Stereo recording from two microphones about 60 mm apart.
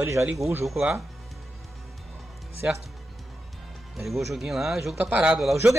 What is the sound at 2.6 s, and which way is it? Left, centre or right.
Speech, right.